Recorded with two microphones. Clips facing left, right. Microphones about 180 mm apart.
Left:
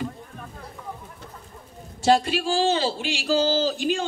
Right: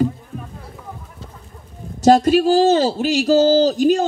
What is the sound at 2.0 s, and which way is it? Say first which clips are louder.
Speech: right 8 dB; 40° right (ahead or behind).